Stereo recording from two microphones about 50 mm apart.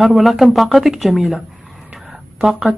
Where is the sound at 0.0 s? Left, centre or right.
Centre.